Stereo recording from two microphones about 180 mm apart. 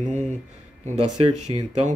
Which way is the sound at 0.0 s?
40° right (ahead or behind).